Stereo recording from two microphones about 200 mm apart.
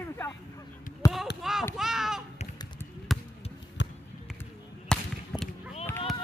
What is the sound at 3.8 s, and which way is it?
Basketball bounce, 65° left (ahead or behind).